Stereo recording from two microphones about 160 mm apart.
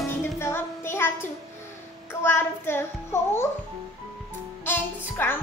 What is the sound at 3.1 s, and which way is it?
Speech, 15° left (ahead or behind).